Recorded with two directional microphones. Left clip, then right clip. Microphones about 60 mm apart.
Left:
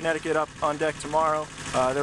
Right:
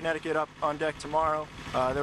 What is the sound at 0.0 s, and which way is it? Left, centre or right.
Speech, centre.